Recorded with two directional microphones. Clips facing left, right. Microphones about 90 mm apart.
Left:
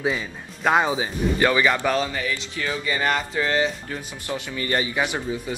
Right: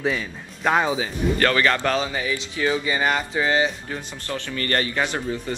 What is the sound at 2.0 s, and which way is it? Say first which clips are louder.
Speech: even; 20° right (ahead or behind).